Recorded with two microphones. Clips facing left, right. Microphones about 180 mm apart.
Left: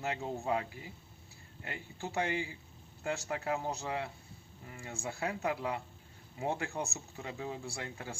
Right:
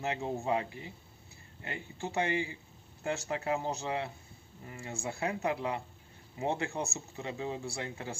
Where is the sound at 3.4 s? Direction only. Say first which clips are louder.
Right 2 dB; 5° right (ahead or behind).